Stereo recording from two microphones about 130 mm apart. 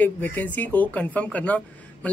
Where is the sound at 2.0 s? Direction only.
10° left (ahead or behind).